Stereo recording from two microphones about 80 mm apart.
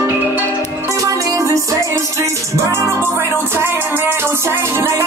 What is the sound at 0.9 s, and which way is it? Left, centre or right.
Music, right.